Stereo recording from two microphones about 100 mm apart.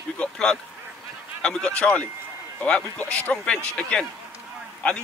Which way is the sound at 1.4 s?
5° left (ahead or behind).